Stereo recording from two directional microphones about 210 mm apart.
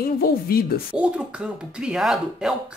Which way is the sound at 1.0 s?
5° right (ahead or behind).